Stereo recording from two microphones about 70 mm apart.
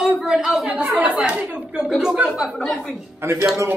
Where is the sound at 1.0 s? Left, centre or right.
Centre.